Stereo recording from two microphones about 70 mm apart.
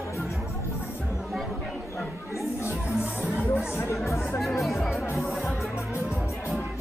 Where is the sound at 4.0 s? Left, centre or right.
Left.